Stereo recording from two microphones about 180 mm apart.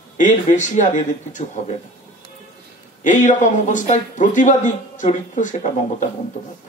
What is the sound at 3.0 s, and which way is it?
Speech, 45° left (ahead or behind).